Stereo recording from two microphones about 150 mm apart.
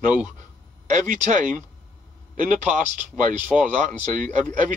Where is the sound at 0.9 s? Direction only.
55° right (ahead or behind).